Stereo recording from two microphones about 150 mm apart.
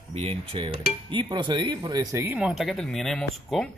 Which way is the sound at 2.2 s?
15° right (ahead or behind).